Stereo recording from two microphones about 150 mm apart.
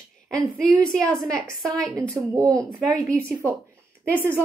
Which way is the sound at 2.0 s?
20° right (ahead or behind).